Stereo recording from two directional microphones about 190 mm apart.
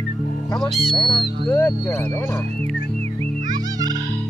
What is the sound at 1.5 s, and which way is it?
Speech, 15° left (ahead or behind).